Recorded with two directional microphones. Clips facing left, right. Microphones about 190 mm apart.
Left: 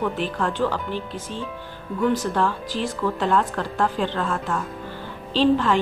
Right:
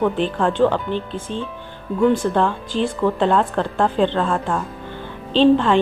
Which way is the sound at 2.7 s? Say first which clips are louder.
Right 8 dB; 25° right (ahead or behind).